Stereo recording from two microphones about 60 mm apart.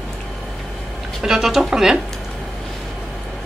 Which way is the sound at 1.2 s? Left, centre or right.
Centre.